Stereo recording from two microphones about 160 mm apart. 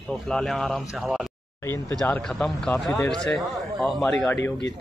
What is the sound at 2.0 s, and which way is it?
Speech, 5° left (ahead or behind).